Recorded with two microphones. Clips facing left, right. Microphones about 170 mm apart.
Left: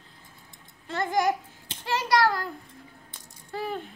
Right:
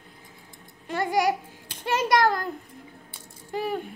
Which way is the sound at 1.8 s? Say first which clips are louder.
Right 2 dB; 20° right (ahead or behind).